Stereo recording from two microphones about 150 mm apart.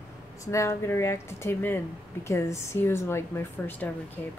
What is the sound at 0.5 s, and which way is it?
Speech, 20° left (ahead or behind).